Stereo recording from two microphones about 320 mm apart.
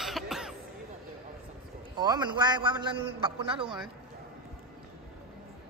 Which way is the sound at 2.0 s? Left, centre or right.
Centre.